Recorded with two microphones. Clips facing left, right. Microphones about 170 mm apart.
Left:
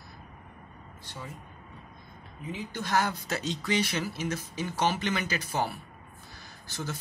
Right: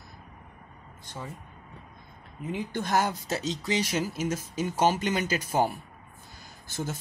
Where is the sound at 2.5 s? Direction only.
50° right (ahead or behind).